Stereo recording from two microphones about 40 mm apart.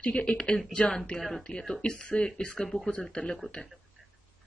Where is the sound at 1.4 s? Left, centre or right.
Left.